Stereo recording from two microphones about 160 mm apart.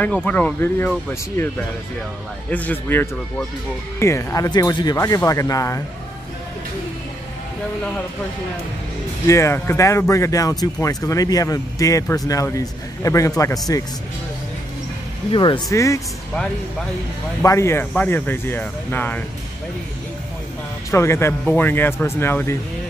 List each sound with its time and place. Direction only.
0.0 s speech: 10° left (ahead or behind)
2.5 s speech: 10° left (ahead or behind)
9.3 s speech: 15° left (ahead or behind)
15.3 s speech: 30° left (ahead or behind)
15.7 s speech: 20° left (ahead or behind)
17.4 s speech: 15° left (ahead or behind)
20.9 s speech: 15° left (ahead or behind)